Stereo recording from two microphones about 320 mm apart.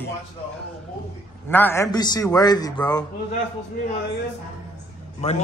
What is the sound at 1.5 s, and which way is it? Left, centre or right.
A man's voice, centre.